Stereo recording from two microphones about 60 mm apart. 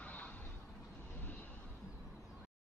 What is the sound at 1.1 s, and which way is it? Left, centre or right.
Vehicle, left.